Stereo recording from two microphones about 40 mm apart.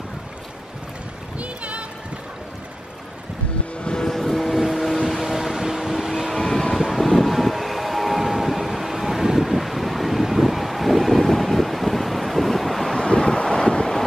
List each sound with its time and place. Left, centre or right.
1.4 s a sound: right
4.0 s vehicle: centre
6.4 s vehicle: centre
13.0 s wind noise: centre